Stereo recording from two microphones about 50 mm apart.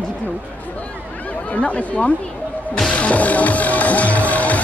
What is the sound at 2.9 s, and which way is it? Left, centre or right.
Music, left.